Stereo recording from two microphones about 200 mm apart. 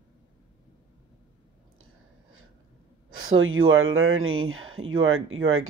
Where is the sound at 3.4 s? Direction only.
85° right.